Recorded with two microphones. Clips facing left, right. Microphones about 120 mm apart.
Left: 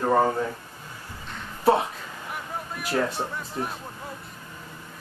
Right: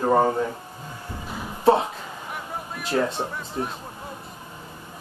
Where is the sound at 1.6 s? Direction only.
25° right (ahead or behind).